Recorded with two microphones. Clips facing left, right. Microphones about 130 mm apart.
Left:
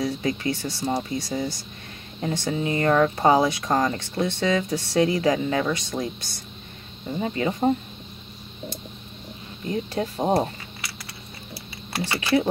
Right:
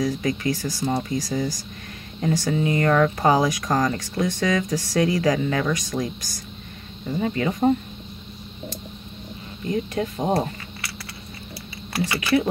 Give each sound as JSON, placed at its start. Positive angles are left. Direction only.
{"t": 0.0, "sound": "speech", "side_deg": 30}
{"t": 9.7, "sound": "speech", "side_deg": 30}
{"t": 11.9, "sound": "speech", "side_deg": 30}